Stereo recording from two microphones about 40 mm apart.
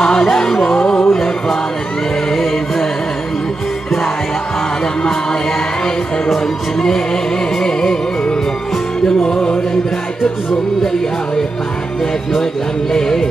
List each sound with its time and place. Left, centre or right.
0.0 s music: centre
6.3 s music: centre
9.3 s music: left
12.9 s music: centre